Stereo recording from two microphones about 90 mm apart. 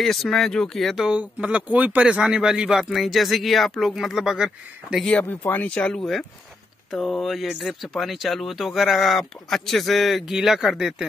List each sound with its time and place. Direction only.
0.0 s speech: centre (ahead or behind)
5.0 s speech: 15° left (ahead or behind)
5.8 s speech: 10° left (ahead or behind)